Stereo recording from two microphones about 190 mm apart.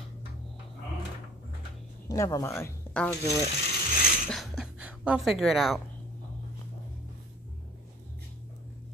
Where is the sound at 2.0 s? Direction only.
15° left (ahead or behind).